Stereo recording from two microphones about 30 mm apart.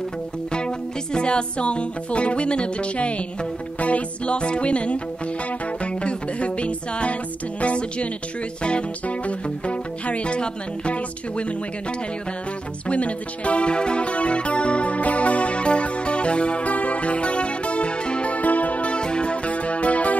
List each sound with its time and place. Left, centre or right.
0.5 s music: left
4.3 s music: left
7.6 s speech: left
12.8 s speech: left
16.6 s music: left
18.3 s music: left
18.9 s music: left